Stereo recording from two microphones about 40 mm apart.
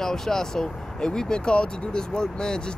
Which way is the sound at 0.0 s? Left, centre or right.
Centre.